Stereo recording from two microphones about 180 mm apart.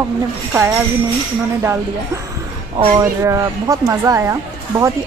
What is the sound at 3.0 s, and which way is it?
Speech, 15° right (ahead or behind).